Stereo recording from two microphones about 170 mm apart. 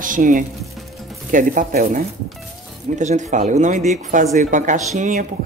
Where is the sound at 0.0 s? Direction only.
50° right (ahead or behind).